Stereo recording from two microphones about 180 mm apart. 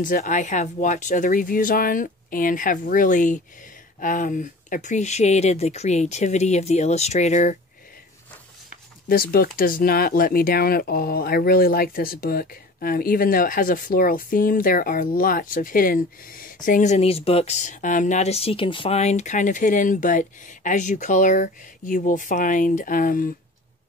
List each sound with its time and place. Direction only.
0.0 s speech: 45° left (ahead or behind)
9.1 s speech: 55° left (ahead or behind)